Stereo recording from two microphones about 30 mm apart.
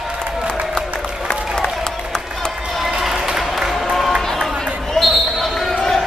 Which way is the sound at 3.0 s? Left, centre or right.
Centre.